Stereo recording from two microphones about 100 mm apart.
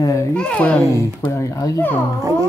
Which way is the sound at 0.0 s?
35° left (ahead or behind).